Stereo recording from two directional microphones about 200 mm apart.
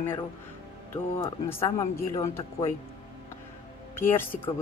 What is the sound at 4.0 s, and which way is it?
Speech, 10° left (ahead or behind).